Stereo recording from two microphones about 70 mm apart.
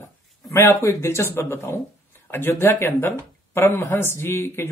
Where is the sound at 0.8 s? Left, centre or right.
Left.